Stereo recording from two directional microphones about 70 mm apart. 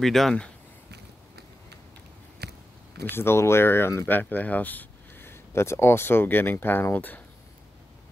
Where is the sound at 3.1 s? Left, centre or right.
Left.